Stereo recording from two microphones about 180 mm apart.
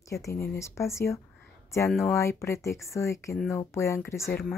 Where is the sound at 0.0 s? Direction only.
15° left (ahead or behind).